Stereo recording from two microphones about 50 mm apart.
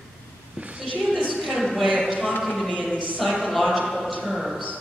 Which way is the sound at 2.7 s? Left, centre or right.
Left.